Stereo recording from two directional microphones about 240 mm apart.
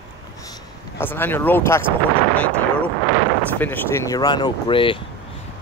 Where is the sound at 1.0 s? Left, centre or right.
Centre.